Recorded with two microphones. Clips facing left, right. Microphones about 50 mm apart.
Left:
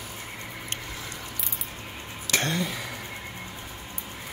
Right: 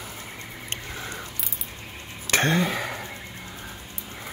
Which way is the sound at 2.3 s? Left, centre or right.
Right.